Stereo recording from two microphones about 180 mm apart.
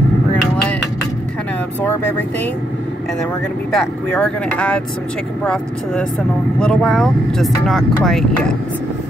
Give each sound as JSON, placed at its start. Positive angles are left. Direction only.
{"t": 3.7, "sound": "speech", "side_deg": 5}